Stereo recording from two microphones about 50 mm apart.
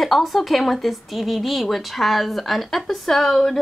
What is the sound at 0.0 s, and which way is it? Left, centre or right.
A woman's voice, centre.